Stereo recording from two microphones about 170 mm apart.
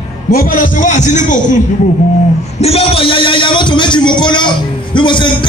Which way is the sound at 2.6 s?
35° left (ahead or behind).